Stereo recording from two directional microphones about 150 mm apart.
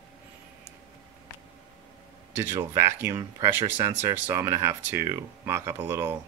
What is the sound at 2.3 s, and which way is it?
Speech, 15° right (ahead or behind).